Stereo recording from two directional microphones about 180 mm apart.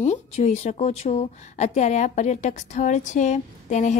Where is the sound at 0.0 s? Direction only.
40° left (ahead or behind).